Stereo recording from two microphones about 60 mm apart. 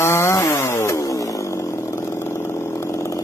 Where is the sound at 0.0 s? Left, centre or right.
Left.